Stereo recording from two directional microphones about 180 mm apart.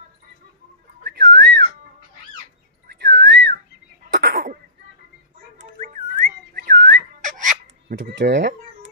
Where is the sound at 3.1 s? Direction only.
75° right (ahead or behind).